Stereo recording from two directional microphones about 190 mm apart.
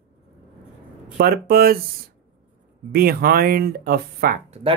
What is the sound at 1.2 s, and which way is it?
Speech, 55° right (ahead or behind).